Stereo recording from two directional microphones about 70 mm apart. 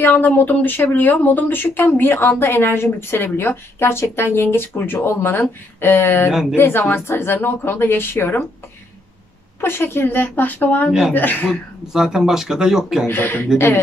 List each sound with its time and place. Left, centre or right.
0.0 s a woman's voice: left
9.6 s a woman's voice: left
10.9 s speech: centre
11.1 s a woman's voice: left
11.9 s speech: centre
13.0 s speech: left